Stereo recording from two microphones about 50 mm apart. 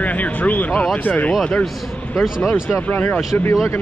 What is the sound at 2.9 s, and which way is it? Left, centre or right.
Speech, left.